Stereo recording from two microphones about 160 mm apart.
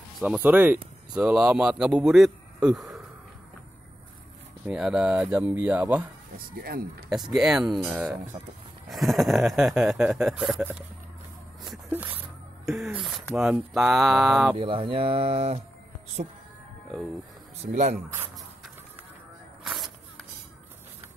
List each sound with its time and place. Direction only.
0.2 s speech: 10° right (ahead or behind)
4.6 s speech: 5° right (ahead or behind)
6.3 s speech: 65° right (ahead or behind)
7.1 s speech: 5° right (ahead or behind)
11.9 s squish: 10° right (ahead or behind)
12.7 s speech: centre (ahead or behind)
14.6 s speech: 35° right (ahead or behind)
17.6 s speech: 50° right (ahead or behind)
19.6 s a sound: centre (ahead or behind)